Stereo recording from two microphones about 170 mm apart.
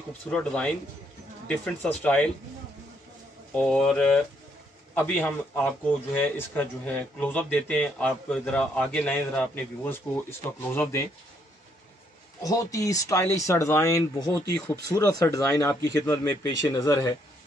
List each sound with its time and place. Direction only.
0.3 s a man's voice: 5° left (ahead or behind)
3.5 s a man's voice: 5° left (ahead or behind)
12.4 s a man's voice: 20° left (ahead or behind)